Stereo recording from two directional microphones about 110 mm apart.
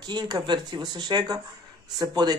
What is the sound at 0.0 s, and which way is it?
Speech, 40° right (ahead or behind).